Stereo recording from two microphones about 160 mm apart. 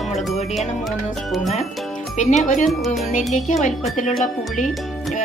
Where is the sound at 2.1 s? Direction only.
50° left (ahead or behind).